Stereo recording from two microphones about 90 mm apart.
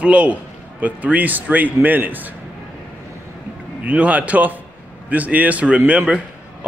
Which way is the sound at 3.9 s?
15° right (ahead or behind).